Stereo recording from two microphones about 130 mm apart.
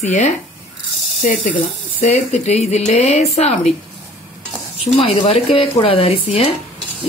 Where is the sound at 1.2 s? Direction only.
80° left.